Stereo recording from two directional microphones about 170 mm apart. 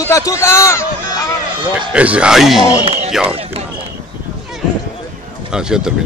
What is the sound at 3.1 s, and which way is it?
Speech, 5° right (ahead or behind).